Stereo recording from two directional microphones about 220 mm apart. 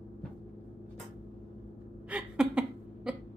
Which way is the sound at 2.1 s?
5° right (ahead or behind).